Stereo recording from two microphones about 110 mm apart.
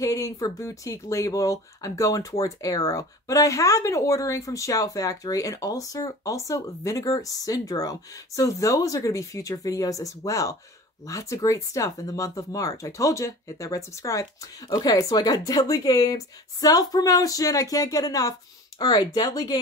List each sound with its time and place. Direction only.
0.0 s speech: 30° left (ahead or behind)